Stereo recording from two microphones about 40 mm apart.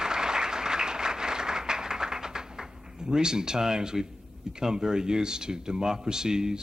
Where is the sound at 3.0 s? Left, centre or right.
Centre.